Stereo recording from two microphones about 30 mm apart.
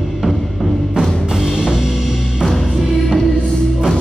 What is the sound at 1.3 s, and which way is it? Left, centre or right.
Music, right.